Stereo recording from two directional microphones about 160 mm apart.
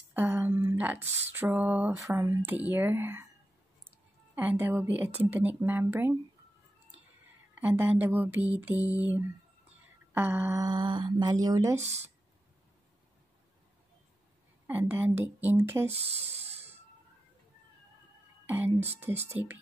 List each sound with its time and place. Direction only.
0.1 s a sound: 15° right (ahead or behind)
1.3 s speech: 10° right (ahead or behind)
4.4 s speech: 10° right (ahead or behind)
7.5 s speech: 10° right (ahead or behind)
10.1 s speech: 15° right (ahead or behind)
10.7 s speech: 25° right (ahead or behind)
14.7 s speech: 10° right (ahead or behind)
16.0 s a sound: 40° right (ahead or behind)
18.5 s speech: 10° right (ahead or behind)